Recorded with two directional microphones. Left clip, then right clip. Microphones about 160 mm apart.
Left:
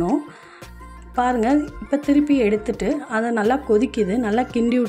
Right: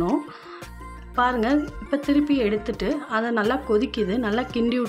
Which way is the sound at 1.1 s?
20° left (ahead or behind).